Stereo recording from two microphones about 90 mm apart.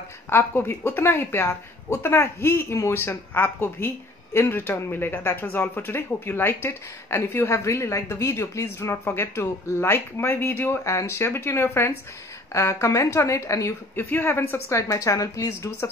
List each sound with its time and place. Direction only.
0.3 s a woman's voice: 25° left (ahead or behind)